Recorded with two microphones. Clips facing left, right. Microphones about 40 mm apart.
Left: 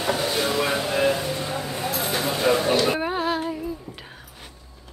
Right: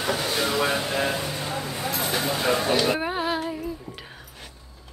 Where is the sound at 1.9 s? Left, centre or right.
Centre.